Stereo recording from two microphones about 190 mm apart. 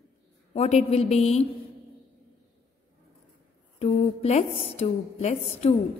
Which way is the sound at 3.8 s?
35° left (ahead or behind).